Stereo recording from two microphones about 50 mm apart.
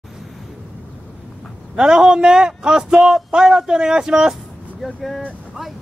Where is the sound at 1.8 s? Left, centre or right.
Centre.